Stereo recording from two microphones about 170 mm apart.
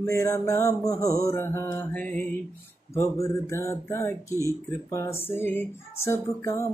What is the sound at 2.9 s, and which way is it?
Speech, 20° left (ahead or behind).